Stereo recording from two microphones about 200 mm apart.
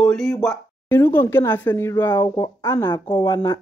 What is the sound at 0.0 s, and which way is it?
Speech, centre (ahead or behind).